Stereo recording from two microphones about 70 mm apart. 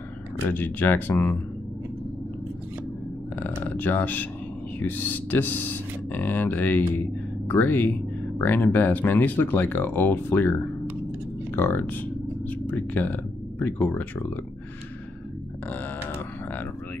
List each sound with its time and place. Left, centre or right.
0.5 s speech: left
3.3 s speech: left
15.7 s grunt: left